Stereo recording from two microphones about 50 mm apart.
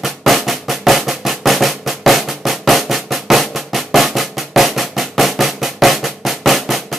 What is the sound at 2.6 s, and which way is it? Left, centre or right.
Drum roll, centre.